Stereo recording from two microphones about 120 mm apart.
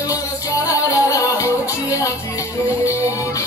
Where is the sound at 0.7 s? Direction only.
25° left (ahead or behind).